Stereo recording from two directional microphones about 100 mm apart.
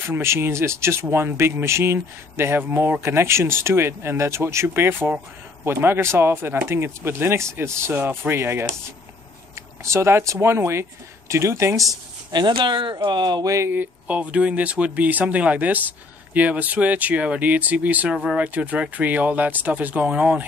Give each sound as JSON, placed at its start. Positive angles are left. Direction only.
{"t": 0.0, "sound": "speech", "side_deg": -25}
{"t": 12.3, "sound": "speech", "side_deg": -50}
{"t": 13.5, "sound": "speech", "side_deg": -30}
{"t": 13.7, "sound": "speech", "side_deg": -15}